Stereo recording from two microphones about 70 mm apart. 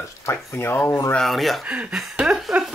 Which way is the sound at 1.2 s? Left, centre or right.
Centre.